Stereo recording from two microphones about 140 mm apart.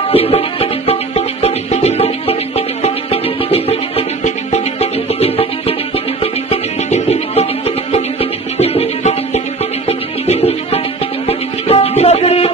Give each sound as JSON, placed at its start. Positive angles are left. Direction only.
{"t": 0.1, "sound": "music", "side_deg": 45}